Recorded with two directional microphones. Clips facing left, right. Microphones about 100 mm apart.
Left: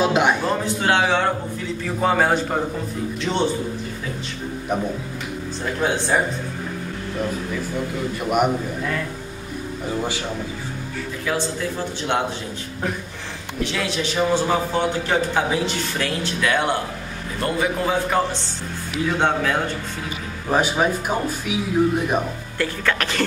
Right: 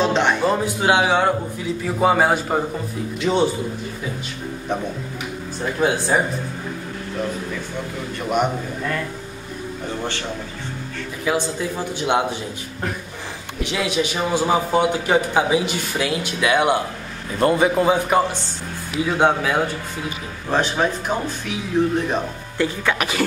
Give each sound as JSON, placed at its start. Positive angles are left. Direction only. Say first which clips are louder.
{"t": 0.0, "sound": "speech", "louder": "even", "side_deg": 10}
{"t": 0.4, "sound": "a man's voice", "louder": "right 3 dB", "side_deg": -10}
{"t": 5.8, "sound": "a man's voice", "louder": "right 3 dB", "side_deg": -5}
{"t": 8.3, "sound": "a man's voice", "louder": "left 1 dB", "side_deg": 5}
{"t": 11.3, "sound": "a man's voice", "louder": "right 3 dB", "side_deg": -15}
{"t": 13.6, "sound": "a man's voice", "louder": "right 2 dB", "side_deg": -15}
{"t": 20.4, "sound": "speech", "louder": "left 1 dB", "side_deg": 10}
{"t": 22.6, "sound": "a man's voice", "louder": "right 2 dB", "side_deg": -15}